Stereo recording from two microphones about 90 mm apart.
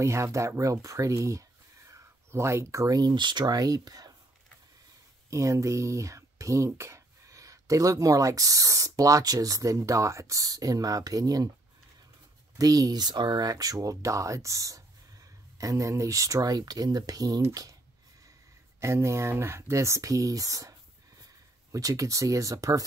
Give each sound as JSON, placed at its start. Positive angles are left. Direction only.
{"t": 0.0, "sound": "speech", "side_deg": -35}
{"t": 3.2, "sound": "speech", "side_deg": -55}
{"t": 5.3, "sound": "speech", "side_deg": -35}
{"t": 12.5, "sound": "speech", "side_deg": -45}
{"t": 18.8, "sound": "speech", "side_deg": -30}
{"t": 21.7, "sound": "speech", "side_deg": -40}